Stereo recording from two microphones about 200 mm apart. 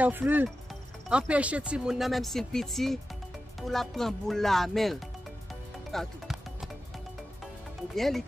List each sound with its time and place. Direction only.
0.0 s speech: 10° right (ahead or behind)
5.9 s music: centre (ahead or behind)
7.9 s speech: centre (ahead or behind)